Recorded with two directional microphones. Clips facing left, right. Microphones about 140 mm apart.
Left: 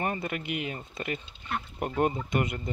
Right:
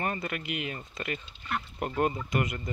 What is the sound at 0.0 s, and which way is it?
Speech, 20° left (ahead or behind).